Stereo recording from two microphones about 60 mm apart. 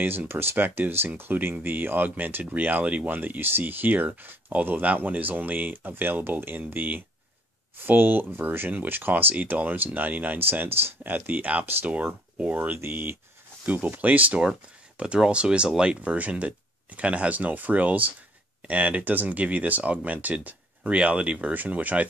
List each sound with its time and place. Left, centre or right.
0.3 s speech: right